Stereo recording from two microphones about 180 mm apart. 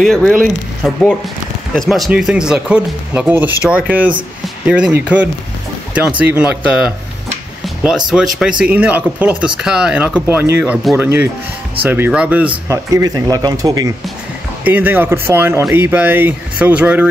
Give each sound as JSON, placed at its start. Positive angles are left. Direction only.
{"t": 0.0, "sound": "speech", "side_deg": 0}
{"t": 7.6, "sound": "music", "side_deg": -5}
{"t": 8.4, "sound": "speech", "side_deg": -5}